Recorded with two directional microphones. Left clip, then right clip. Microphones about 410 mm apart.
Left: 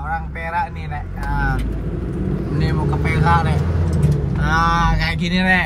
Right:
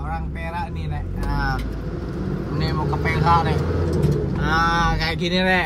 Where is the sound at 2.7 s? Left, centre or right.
Left.